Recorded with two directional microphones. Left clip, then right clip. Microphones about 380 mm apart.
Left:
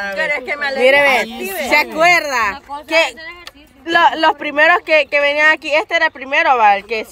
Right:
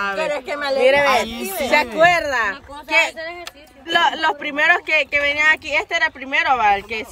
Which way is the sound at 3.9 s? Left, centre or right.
Centre.